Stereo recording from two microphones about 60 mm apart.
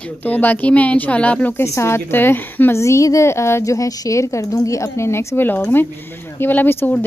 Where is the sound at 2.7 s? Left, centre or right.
Left.